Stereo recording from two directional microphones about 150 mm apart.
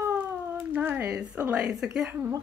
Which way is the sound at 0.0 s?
15° right (ahead or behind).